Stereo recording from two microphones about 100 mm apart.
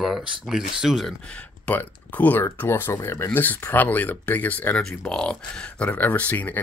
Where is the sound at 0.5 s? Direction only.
5° right (ahead or behind).